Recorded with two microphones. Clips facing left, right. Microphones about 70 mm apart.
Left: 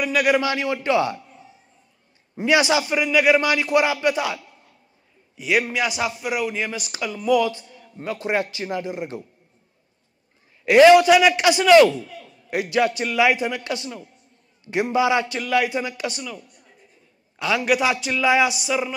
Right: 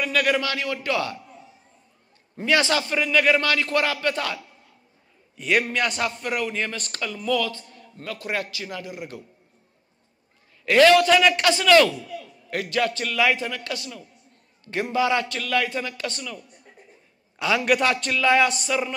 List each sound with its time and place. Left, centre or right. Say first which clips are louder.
0.0 s a man's voice: left 3 dB; centre
2.3 s a man's voice: left 3 dB; centre
5.4 s a man's voice: left 1 dB; centre; by 9.2 s left
10.6 s a man's voice: left 4 dB; centre